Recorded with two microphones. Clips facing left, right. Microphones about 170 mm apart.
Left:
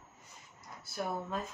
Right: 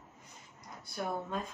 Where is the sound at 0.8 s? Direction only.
5° left (ahead or behind).